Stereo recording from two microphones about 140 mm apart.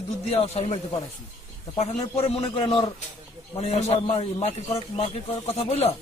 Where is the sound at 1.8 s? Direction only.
40° left (ahead or behind).